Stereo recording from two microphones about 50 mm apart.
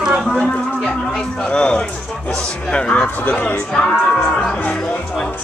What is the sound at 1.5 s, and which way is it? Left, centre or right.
Speech, left.